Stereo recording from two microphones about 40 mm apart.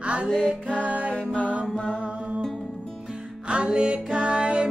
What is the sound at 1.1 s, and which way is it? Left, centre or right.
Mantra, left.